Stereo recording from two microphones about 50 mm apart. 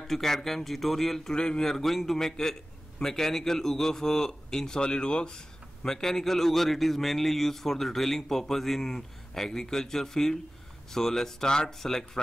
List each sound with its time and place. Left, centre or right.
0.0 s a man's voice: centre